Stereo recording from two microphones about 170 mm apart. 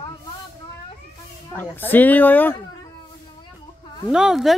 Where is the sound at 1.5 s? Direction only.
10° left (ahead or behind).